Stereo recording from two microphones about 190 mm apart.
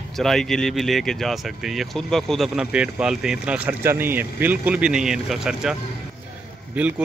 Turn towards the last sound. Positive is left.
turn(degrees=-10)  # may be behind; listen again after turning